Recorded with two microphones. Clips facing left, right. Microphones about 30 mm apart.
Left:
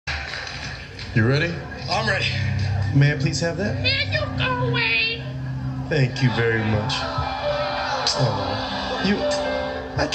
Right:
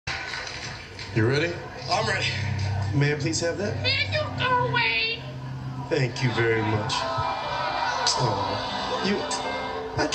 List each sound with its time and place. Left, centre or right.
1.1 s a man's voice: centre
4.6 s child singing: centre
6.0 s music: centre